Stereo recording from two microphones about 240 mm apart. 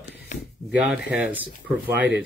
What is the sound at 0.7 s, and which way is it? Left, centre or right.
Speech, centre.